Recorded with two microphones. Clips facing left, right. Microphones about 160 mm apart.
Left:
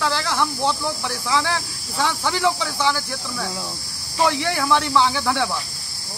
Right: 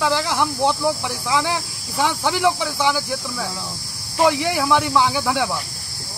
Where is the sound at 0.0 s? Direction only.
15° right (ahead or behind).